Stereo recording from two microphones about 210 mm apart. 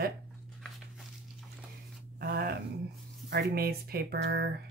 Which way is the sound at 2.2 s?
45° right (ahead or behind).